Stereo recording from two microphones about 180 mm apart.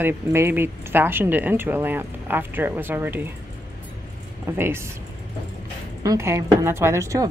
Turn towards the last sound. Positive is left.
turn(degrees=-15)  # may be behind; listen again after turning